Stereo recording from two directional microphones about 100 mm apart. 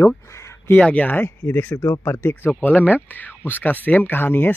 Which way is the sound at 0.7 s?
15° left (ahead or behind).